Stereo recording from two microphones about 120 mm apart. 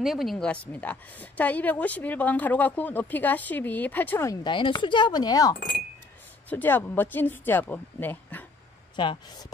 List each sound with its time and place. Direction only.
0.0 s a woman's voice: centre (ahead or behind); by 4.3 s 15° left (ahead or behind)
4.3 s speech: 40° left (ahead or behind)
6.5 s a woman's voice: 15° left (ahead or behind)
8.9 s speech: 40° left (ahead or behind)